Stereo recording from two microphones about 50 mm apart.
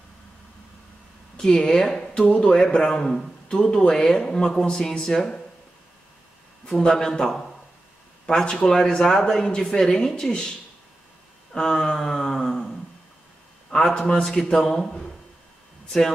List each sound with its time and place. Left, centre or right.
1.3 s speech: centre
6.7 s speech: centre
11.5 s a sound: centre
13.9 s a man's voice: left
14.5 s speech: centre